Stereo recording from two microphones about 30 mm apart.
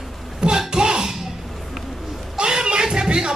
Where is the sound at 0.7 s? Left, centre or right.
Right.